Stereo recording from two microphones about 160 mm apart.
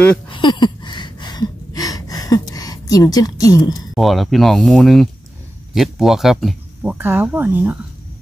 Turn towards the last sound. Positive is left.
turn(degrees=-10)  # may be behind; listen again after turning